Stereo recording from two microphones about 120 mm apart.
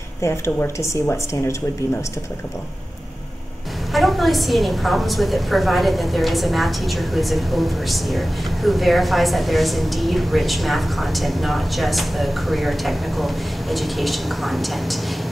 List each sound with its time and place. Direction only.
0.2 s speech: 25° left (ahead or behind)
3.9 s a woman's voice: centre (ahead or behind)